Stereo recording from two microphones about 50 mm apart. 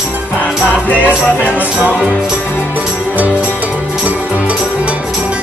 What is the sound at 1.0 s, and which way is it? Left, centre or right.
Music, right.